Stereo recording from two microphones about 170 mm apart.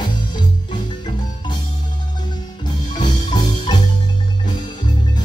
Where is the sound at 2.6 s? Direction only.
25° left (ahead or behind).